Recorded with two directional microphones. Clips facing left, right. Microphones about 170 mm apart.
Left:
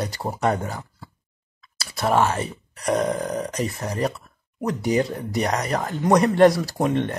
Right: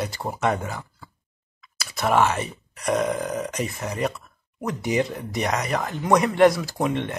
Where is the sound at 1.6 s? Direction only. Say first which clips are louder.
Left 1 dB; 35° left (ahead or behind).